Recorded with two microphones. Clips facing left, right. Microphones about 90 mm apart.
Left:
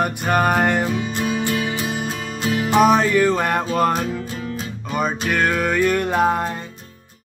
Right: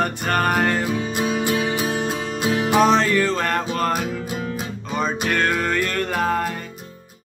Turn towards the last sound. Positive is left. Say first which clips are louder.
# left 3 dB
turn(degrees=20)  # may be behind; listen again after turning